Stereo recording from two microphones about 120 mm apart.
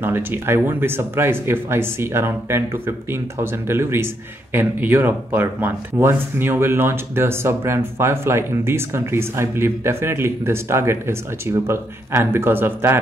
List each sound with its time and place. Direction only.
0.0 s speech: 20° right (ahead or behind)